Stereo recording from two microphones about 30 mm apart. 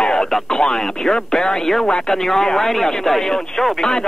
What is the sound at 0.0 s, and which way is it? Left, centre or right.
Radio, left.